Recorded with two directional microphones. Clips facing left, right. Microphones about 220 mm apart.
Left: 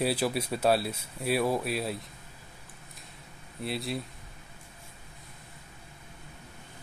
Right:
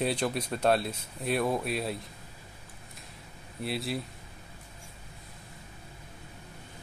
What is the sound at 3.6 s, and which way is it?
Speech, centre (ahead or behind).